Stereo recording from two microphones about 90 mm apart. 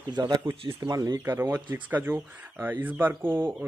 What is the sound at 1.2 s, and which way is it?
Speech, 30° right (ahead or behind).